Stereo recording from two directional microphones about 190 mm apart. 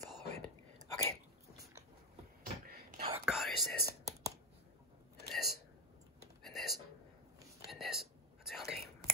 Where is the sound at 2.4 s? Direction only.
50° right (ahead or behind).